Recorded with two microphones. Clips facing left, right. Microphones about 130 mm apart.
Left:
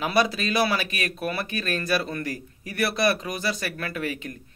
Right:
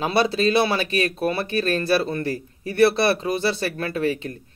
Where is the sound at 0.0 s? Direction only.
30° right (ahead or behind).